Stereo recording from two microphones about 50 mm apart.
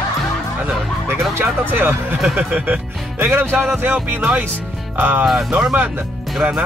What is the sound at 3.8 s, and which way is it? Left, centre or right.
Music, right.